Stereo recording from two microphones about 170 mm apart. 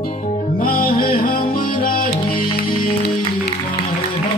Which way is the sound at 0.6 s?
60° left (ahead or behind).